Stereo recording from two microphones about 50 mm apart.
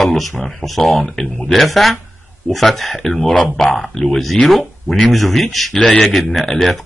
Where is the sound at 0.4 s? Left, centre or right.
Centre.